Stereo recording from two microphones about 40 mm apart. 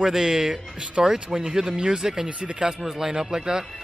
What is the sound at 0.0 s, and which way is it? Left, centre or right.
Speech, centre.